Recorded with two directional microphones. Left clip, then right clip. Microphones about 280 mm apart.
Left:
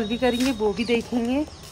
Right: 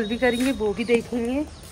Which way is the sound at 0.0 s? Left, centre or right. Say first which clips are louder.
Right 1 dB; centre.